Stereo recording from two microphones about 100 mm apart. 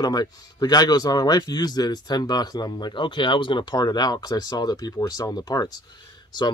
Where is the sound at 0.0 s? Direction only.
40° left (ahead or behind).